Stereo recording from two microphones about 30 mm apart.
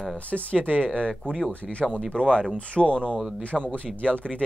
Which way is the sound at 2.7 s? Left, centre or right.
Left.